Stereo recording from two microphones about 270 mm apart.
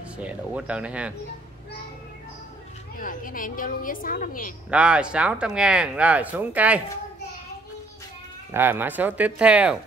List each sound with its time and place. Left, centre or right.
0.2 s speech: centre
3.0 s a woman's voice: left
4.6 s speech: centre
8.5 s speech: centre